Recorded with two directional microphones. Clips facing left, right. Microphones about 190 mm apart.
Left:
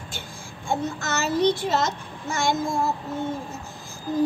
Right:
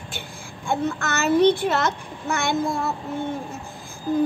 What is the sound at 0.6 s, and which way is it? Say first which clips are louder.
Child singing: right 2 dB; 60° right (ahead or behind).